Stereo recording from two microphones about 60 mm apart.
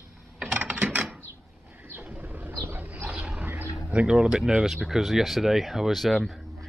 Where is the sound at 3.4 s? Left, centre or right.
Right.